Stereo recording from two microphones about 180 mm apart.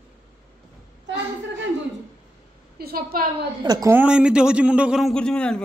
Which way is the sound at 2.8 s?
55° right (ahead or behind).